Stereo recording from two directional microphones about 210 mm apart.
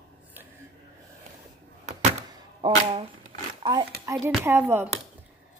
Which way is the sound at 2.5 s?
25° right (ahead or behind).